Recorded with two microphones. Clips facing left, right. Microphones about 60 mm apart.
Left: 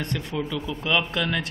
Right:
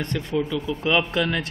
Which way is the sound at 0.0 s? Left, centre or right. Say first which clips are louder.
Right 4 dB; centre.